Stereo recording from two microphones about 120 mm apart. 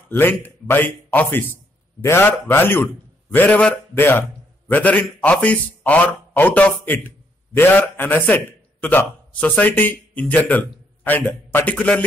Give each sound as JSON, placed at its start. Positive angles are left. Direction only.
{"t": 0.1, "sound": "a man's voice", "side_deg": 15}